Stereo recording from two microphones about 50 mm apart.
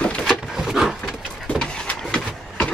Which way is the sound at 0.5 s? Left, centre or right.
Centre.